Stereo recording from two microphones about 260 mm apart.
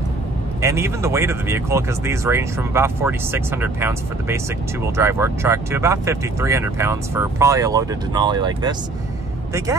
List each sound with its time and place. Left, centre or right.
0.6 s speech: centre